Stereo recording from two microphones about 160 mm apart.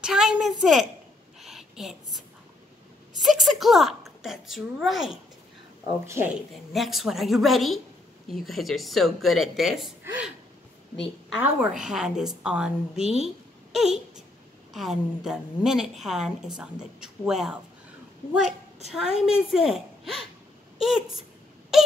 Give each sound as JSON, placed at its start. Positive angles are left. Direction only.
{"t": 0.0, "sound": "a woman's voice", "side_deg": -5}
{"t": 1.4, "sound": "a sound", "side_deg": 0}
{"t": 3.2, "sound": "a woman's voice", "side_deg": 0}
{"t": 6.0, "sound": "speech", "side_deg": -15}
{"t": 6.7, "sound": "a woman's voice", "side_deg": 0}
{"t": 13.2, "sound": "a sound", "side_deg": -5}
{"t": 14.7, "sound": "a woman's voice", "side_deg": 0}
{"t": 18.9, "sound": "a woman's voice", "side_deg": -5}